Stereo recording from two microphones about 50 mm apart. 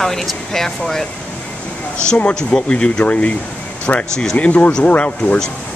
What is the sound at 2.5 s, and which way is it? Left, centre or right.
Speech, centre.